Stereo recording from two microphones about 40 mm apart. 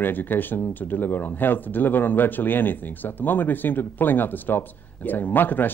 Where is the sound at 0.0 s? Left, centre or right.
Left.